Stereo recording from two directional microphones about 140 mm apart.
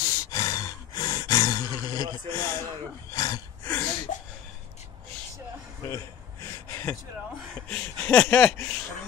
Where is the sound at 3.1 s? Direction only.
25° left (ahead or behind).